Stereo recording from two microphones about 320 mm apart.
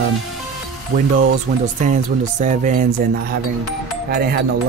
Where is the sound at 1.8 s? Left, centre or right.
Right.